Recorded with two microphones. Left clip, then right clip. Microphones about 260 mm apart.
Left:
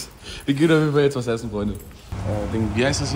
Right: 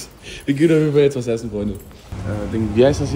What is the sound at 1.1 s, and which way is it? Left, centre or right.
Speech, left.